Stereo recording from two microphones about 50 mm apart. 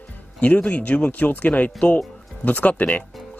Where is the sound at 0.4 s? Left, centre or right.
Left.